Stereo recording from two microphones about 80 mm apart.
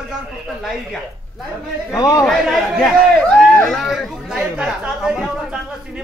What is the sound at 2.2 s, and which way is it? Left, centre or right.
A man's voice, centre.